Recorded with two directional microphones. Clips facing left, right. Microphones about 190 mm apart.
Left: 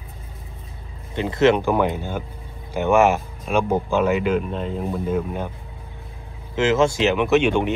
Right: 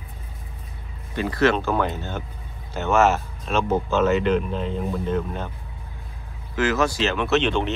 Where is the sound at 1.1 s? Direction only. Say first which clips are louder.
Left 3 dB; 20° left (ahead or behind).